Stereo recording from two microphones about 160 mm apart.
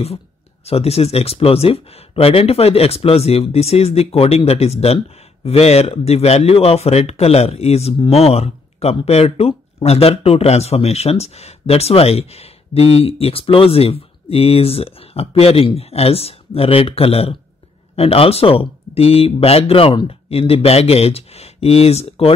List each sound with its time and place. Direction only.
0.7 s speech: 40° left (ahead or behind)